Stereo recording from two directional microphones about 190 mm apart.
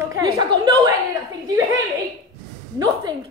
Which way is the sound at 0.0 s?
20° right (ahead or behind).